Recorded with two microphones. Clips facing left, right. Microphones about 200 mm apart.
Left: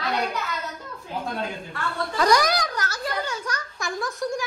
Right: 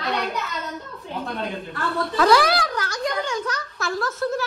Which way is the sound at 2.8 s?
5° left (ahead or behind).